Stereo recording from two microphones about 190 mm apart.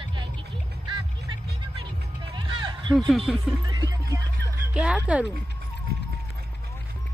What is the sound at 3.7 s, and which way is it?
Music, 20° right (ahead or behind).